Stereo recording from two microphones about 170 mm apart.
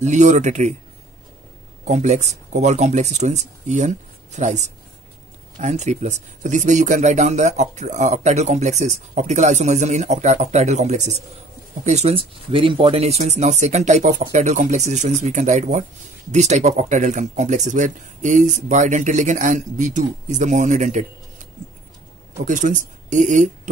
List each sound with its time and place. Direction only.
0.0 s speech: 45° right (ahead or behind)
1.9 s speech: 45° right (ahead or behind)
22.4 s speech: 50° right (ahead or behind)